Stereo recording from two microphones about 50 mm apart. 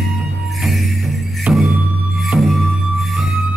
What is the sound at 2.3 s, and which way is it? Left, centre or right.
Music, centre.